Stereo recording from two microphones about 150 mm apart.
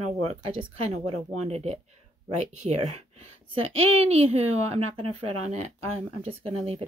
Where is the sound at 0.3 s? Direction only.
40° right (ahead or behind).